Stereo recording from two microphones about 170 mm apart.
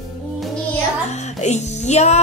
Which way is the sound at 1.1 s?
40° left (ahead or behind).